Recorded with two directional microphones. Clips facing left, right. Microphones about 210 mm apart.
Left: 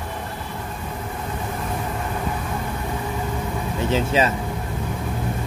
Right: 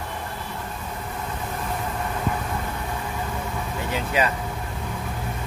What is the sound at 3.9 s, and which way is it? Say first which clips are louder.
Speech: left 4 dB; 25° left (ahead or behind).